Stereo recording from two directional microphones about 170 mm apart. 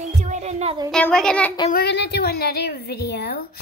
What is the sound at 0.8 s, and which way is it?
Speech, 5° left (ahead or behind).